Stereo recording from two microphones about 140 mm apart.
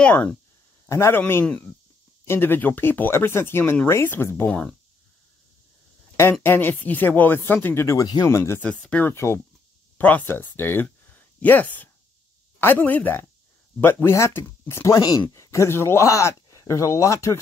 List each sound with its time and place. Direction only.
0.0 s speech: 10° left (ahead or behind)
6.4 s speech: 15° left (ahead or behind)
8.6 s speech: 10° left (ahead or behind)